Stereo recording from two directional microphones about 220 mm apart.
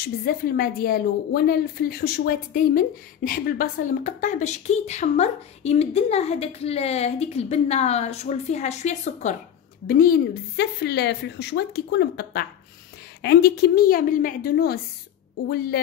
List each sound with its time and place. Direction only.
0.0 s a woman's voice: 45° left (ahead or behind)